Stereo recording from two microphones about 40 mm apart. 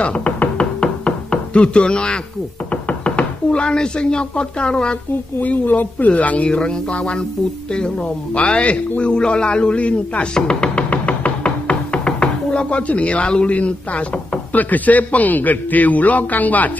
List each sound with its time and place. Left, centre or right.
0.0 s music: left
2.7 s speech: left
5.4 s speech: left
6.5 s a man's voice: left
8.4 s a man's voice: left
10.3 s music: left
14.5 s a man's voice: left